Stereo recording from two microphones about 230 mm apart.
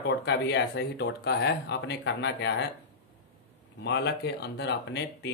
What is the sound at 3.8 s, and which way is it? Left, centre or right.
Speech, left.